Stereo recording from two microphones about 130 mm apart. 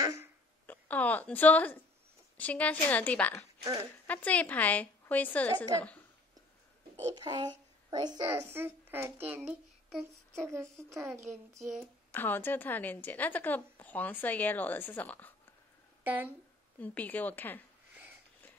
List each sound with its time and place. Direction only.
0.0 s a sound: 25° right (ahead or behind)
0.7 s a woman's voice: 10° left (ahead or behind)
7.2 s speech: 35° right (ahead or behind)
8.2 s a child's voice: 20° right (ahead or behind)
9.8 s child singing: centre (ahead or behind)
10.4 s a woman's voice: 20° right (ahead or behind)
11.1 s a child's voice: 60° right (ahead or behind)
12.1 s a woman's voice: 15° left (ahead or behind)
16.0 s speech: 15° right (ahead or behind)
16.8 s a woman's voice: 10° left (ahead or behind)